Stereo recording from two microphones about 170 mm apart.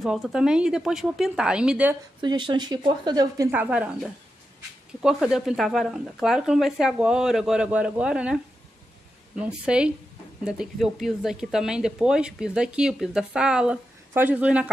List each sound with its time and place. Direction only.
0.0 s speech: 5° right (ahead or behind)
2.2 s speech: 25° right (ahead or behind)
3.5 s speech: 10° right (ahead or behind)
9.4 s speech: 5° right (ahead or behind)